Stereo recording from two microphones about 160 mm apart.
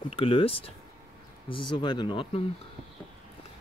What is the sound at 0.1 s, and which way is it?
Speech, 35° left (ahead or behind).